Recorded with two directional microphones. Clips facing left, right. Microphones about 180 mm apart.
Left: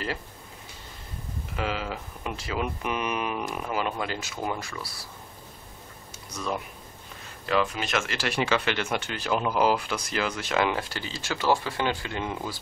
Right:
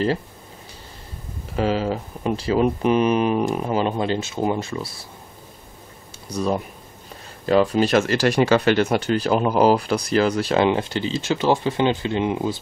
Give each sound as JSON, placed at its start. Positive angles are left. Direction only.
{"t": 1.6, "sound": "speech", "side_deg": -35}
{"t": 6.2, "sound": "speech", "side_deg": -35}